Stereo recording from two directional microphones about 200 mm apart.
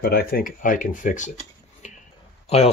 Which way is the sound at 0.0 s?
50° left (ahead or behind).